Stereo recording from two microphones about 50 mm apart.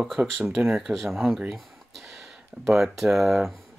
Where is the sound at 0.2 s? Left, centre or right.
Right.